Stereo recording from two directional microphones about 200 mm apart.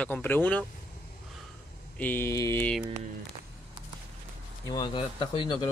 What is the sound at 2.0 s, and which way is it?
Speech, 10° left (ahead or behind).